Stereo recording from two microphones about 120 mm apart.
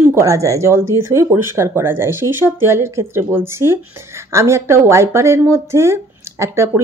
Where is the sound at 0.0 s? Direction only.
20° right (ahead or behind).